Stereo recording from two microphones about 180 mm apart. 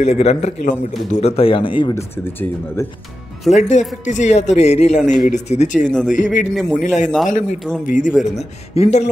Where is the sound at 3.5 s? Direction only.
40° left (ahead or behind).